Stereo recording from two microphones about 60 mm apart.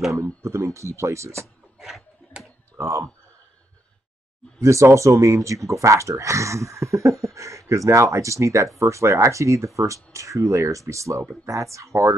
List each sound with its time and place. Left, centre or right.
0.1 s speech: right
1.8 s a sound: centre
2.8 s speech: right
4.6 s speech: right